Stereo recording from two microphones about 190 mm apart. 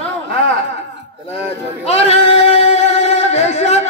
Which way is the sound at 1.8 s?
30° left (ahead or behind).